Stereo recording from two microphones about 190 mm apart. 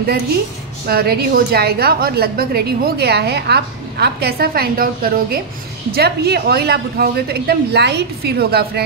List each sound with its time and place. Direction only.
0.8 s a woman's voice: 55° right (ahead or behind)